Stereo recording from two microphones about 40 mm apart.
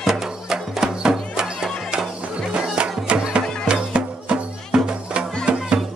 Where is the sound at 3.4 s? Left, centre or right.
Centre.